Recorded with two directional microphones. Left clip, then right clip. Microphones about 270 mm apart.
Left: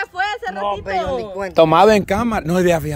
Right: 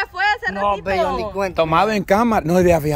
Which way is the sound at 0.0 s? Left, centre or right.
Centre.